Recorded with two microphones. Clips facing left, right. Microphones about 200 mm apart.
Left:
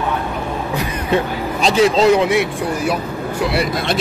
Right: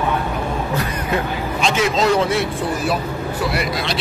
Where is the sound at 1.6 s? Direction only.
35° left (ahead or behind).